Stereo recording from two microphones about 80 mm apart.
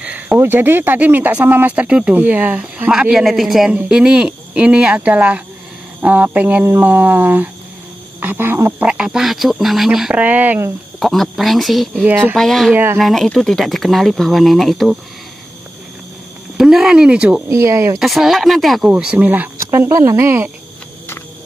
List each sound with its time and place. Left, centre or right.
0.0 s a sound: centre
0.4 s speech: right
2.9 s speech: centre; by 8.7 s right
8.7 s speech: centre
9.0 s speech: centre
10.1 s speech: centre
11.0 s speech: centre
12.7 s speech: right
13.0 s speech: centre
16.5 s speech: centre
17.5 s speech: right
18.0 s speech: centre
18.8 s speech: centre
19.9 s speech: right